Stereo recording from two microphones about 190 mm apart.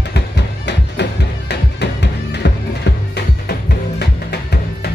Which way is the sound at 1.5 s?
60° left (ahead or behind).